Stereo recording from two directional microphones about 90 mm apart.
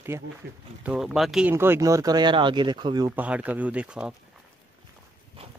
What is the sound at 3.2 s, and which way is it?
Speech, 15° right (ahead or behind).